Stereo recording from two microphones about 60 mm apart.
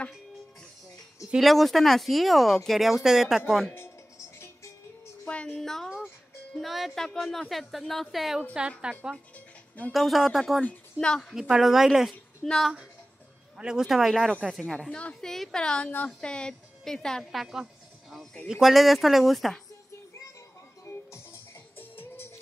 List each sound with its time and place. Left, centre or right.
1.4 s speech: centre
5.2 s a sound: centre
5.6 s speech: centre
8.5 s speech: centre
9.9 s speech: centre
11.0 s a woman's voice: centre
11.3 s speech: centre
13.6 s speech: centre
14.9 s a woman's voice: centre
15.1 s a woman's voice: centre
17.2 s speech: centre
20.8 s music: left